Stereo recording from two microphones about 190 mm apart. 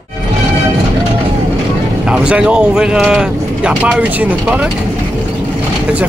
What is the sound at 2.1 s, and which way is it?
Speech, 5° right (ahead or behind).